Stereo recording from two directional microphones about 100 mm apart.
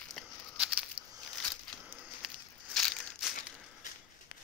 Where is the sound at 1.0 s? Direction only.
60° right (ahead or behind).